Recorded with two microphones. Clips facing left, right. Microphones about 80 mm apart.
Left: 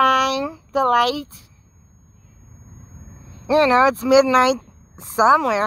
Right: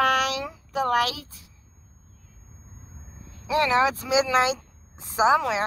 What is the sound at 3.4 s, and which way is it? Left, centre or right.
Speech, left.